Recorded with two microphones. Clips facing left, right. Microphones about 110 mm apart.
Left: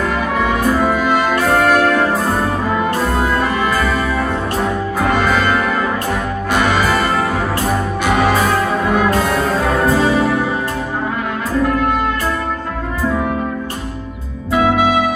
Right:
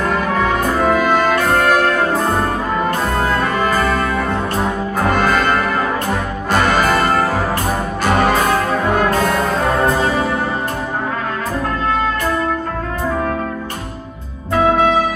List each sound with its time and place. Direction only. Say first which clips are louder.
0.0 s brass instrument: even; 5° left (ahead or behind)
2.8 s music: left 1 dB; 5° left (ahead or behind)
8.0 s brass instrument: right 1 dB; 5° left (ahead or behind)